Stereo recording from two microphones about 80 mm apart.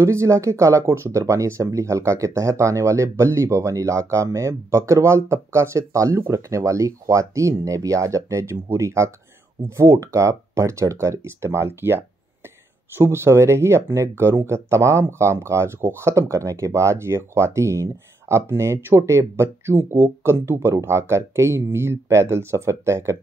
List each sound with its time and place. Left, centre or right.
0.0 s speech: right